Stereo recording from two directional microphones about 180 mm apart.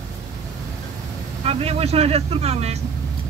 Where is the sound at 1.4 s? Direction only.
35° right (ahead or behind).